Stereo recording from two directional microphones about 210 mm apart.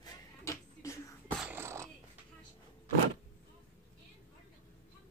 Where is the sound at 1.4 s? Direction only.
10° right (ahead or behind).